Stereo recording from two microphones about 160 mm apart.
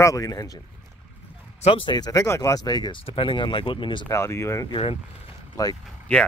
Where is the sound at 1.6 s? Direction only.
35° left (ahead or behind).